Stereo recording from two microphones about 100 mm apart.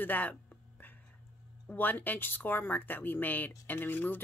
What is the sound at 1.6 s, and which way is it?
Speech, 15° left (ahead or behind).